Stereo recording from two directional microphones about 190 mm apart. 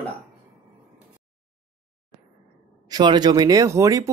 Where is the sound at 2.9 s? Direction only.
20° right (ahead or behind).